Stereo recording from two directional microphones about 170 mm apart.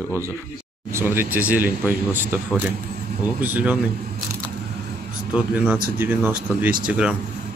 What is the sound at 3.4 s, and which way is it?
Speech, 10° right (ahead or behind).